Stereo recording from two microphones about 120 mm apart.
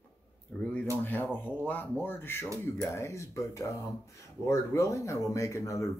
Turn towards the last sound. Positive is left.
turn(degrees=25)  # may be behind; listen again after turning